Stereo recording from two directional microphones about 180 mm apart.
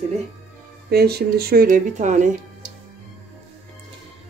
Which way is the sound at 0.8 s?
60° right (ahead or behind).